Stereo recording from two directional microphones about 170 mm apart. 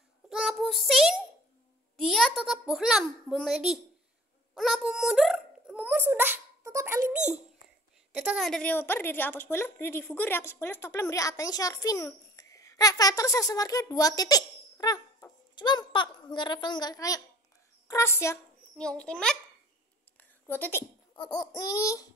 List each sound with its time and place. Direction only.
0.3 s child singing: centre (ahead or behind)
2.0 s a child's voice: centre (ahead or behind)
4.6 s a sound: centre (ahead or behind); by 7.2 s 15° right (ahead or behind)
8.1 s a woman's voice: 5° right (ahead or behind); by 18.4 s 15° left (ahead or behind)
18.8 s a child's voice: 5° left (ahead or behind)
20.2 s a sound: 10° left (ahead or behind)
21.2 s a child's voice: 25° left (ahead or behind)